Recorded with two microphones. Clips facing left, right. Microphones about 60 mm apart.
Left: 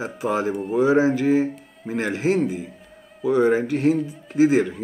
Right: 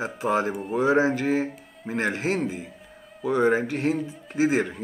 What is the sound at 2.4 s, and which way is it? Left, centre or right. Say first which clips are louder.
Mantra: left 5 dB; centre.